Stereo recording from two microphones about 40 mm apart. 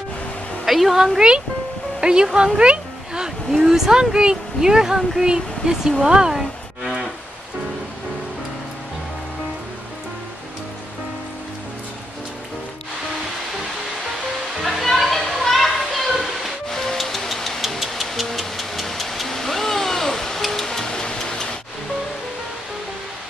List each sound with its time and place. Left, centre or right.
0.7 s speech: centre; by 3.3 s right
3.5 s speech: centre
6.8 s cattle: centre
14.6 s music: centre
15.4 s children playing: centre
16.6 s music: centre